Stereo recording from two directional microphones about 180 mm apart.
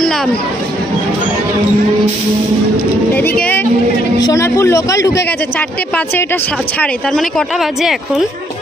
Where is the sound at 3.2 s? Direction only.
10° left (ahead or behind).